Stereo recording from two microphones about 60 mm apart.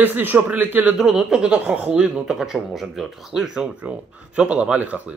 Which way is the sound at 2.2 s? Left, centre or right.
Centre.